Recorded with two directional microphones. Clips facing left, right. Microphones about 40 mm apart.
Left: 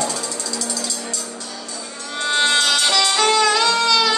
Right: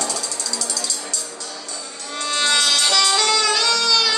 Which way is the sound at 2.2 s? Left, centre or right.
Left.